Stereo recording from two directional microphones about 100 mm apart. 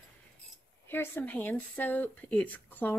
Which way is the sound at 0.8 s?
20° left (ahead or behind).